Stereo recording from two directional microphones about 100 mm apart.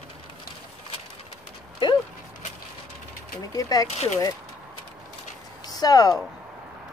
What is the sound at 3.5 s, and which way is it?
Speech, 35° left (ahead or behind).